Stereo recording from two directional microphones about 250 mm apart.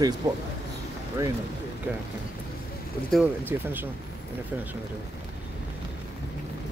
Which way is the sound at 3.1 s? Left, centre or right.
Centre.